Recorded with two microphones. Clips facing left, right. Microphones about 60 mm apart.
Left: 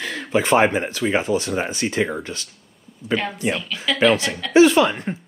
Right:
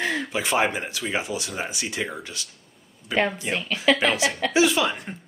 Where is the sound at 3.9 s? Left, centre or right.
Right.